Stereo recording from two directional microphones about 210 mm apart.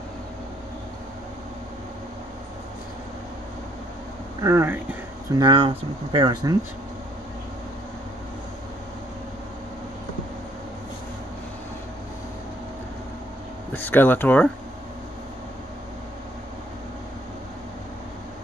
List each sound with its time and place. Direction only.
4.4 s speech: 15° right (ahead or behind)
5.4 s speech: 25° right (ahead or behind)
13.7 s speech: 10° left (ahead or behind)